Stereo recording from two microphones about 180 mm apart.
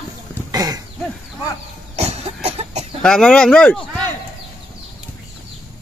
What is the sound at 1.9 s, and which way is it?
Cough, 35° right (ahead or behind).